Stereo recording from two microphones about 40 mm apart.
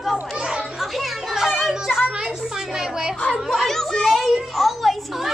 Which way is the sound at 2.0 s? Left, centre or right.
Centre.